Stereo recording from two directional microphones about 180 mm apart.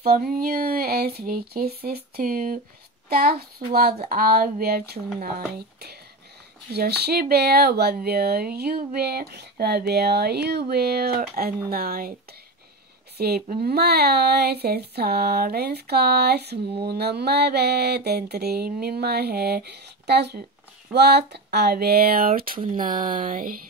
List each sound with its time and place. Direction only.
0.0 s speech: 55° right (ahead or behind)
6.7 s speech: 65° right (ahead or behind)
13.2 s speech: 60° right (ahead or behind)